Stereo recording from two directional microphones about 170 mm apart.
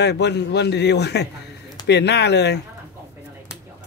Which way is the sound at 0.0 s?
85° left.